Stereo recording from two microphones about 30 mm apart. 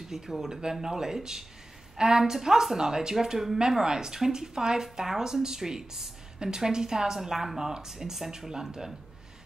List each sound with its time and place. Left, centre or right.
0.1 s a woman's voice: centre